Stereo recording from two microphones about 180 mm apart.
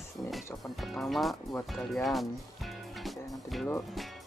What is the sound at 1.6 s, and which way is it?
Music, centre (ahead or behind).